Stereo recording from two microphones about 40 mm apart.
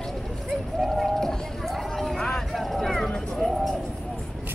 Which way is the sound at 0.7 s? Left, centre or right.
Centre.